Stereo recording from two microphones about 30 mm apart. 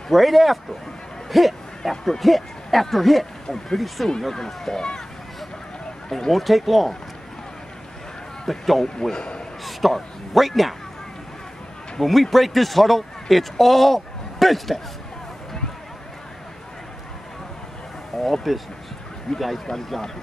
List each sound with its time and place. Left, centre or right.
0.1 s speech: centre
4.7 s speech: centre
6.0 s speech: centre
6.3 s speech: centre
8.5 s speech: centre
9.1 s a man's voice: left
9.7 s speech: centre
12.0 s a man's voice: centre
18.1 s speech: centre
19.6 s speech: centre